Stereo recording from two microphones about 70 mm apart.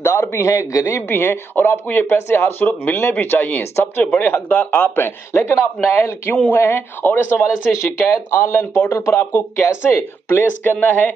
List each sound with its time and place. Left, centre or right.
0.0 s speech: left